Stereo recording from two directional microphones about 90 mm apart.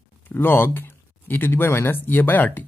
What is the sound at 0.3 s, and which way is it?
Speech, 25° left (ahead or behind).